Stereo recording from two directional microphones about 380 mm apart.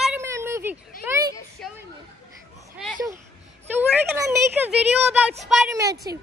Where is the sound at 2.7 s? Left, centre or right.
Centre.